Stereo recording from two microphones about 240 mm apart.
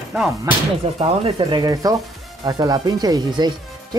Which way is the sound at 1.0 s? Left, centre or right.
Right.